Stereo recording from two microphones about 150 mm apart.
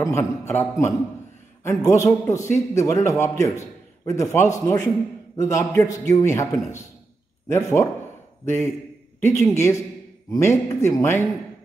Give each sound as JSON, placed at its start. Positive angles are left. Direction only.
{"t": 0.0, "sound": "a man's voice", "side_deg": 20}